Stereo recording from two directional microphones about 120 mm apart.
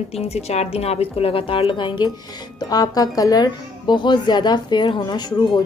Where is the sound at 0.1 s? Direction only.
60° left (ahead or behind).